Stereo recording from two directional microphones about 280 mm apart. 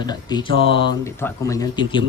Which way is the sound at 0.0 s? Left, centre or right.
Centre.